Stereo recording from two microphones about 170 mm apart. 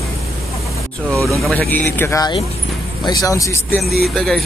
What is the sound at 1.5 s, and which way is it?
Speech, 10° left (ahead or behind).